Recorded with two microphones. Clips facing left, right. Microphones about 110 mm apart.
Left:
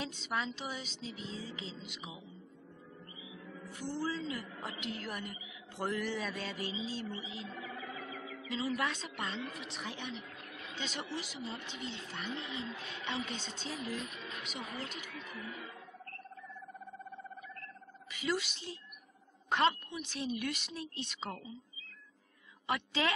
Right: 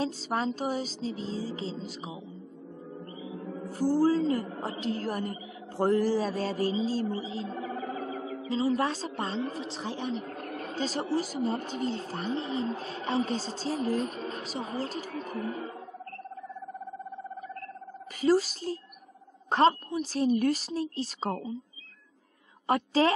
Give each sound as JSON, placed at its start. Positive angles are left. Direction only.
{"t": 0.0, "sound": "a woman's voice", "side_deg": -35}
{"t": 3.3, "sound": "a woman's voice", "side_deg": -40}
{"t": 18.2, "sound": "a woman's voice", "side_deg": -40}
{"t": 22.7, "sound": "a woman's voice", "side_deg": -40}